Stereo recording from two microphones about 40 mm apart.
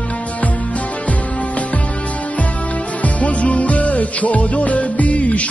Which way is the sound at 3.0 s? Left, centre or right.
Left.